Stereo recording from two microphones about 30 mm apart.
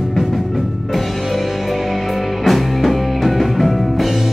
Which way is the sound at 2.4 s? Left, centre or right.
Centre.